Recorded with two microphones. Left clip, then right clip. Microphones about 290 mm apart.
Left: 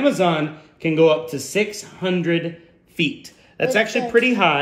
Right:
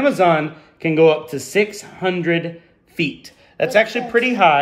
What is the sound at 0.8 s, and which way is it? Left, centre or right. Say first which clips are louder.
Speech: right 2 dB; centre.